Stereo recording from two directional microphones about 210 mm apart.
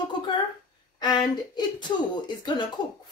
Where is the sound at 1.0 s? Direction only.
20° left (ahead or behind).